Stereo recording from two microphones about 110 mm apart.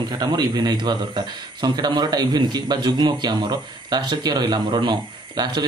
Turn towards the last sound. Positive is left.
turn(degrees=-40)  # may be behind; listen again after turning